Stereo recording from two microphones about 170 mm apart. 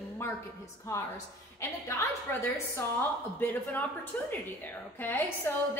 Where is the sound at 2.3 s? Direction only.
15° left (ahead or behind).